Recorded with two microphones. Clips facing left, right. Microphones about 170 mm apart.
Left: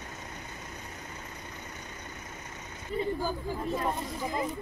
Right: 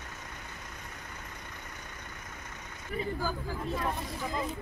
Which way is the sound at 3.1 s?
20° left (ahead or behind).